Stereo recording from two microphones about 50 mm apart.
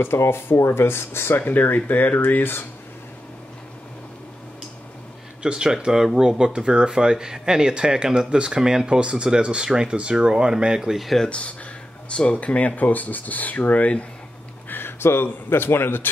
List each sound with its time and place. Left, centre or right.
0.1 s speech: left
1.4 s speech: left
5.4 s speech: centre
11.2 s speech: left
14.7 s speech: left